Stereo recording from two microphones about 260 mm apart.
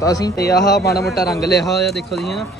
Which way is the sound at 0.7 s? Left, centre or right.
Left.